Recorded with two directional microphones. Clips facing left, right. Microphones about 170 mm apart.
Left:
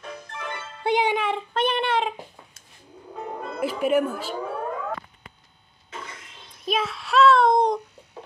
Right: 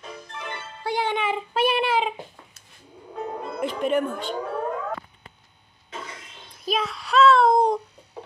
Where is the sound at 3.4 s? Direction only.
5° left (ahead or behind).